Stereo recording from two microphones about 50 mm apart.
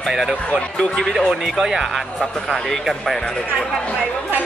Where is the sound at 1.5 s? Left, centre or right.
Centre.